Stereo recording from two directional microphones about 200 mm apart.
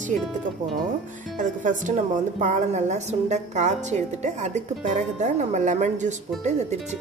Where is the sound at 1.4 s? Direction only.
40° right (ahead or behind).